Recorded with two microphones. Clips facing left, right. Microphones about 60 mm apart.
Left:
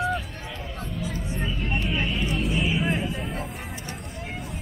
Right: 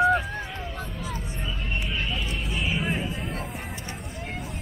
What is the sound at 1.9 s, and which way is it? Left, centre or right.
Vehicle, centre.